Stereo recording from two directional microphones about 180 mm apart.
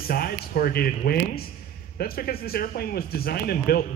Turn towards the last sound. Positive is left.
turn(degrees=55)  # may be behind; listen again after turning